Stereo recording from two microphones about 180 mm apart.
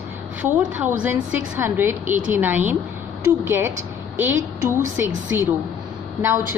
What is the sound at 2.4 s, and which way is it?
A woman's voice, 10° right (ahead or behind).